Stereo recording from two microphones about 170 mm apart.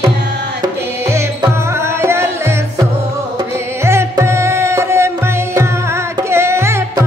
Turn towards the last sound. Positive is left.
turn(degrees=-15)  # may be behind; listen again after turning